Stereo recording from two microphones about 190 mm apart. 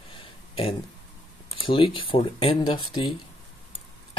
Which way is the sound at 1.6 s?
25° left (ahead or behind).